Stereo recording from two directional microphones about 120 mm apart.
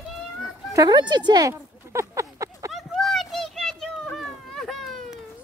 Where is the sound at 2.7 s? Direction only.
Centre (ahead or behind).